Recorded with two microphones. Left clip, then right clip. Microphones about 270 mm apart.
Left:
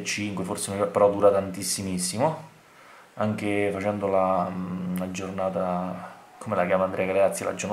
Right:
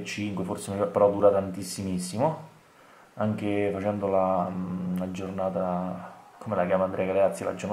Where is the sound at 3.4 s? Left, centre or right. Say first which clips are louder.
Left 1 dB; centre.